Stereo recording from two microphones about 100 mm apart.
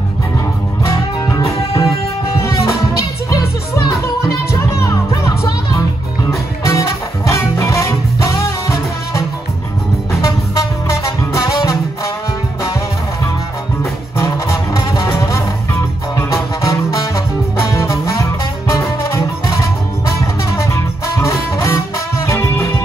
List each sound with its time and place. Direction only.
0.8 s music: 30° left (ahead or behind)
3.3 s music: 40° left (ahead or behind)
10.2 s music: 35° left (ahead or behind)
14.1 s music: 30° left (ahead or behind)